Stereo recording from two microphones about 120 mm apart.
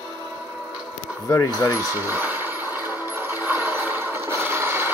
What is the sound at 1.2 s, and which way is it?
Speech, 25° left (ahead or behind).